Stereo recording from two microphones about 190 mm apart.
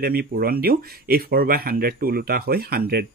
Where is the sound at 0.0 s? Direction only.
55° right (ahead or behind).